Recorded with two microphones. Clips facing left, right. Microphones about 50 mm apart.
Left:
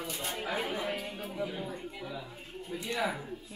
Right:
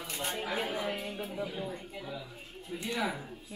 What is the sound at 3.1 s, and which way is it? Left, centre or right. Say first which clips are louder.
Speech: left 2 dB; centre.